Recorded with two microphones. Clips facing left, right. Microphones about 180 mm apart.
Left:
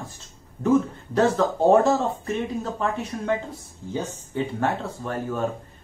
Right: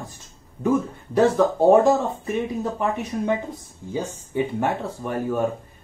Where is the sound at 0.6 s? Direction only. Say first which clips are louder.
Left 1 dB; 10° right (ahead or behind).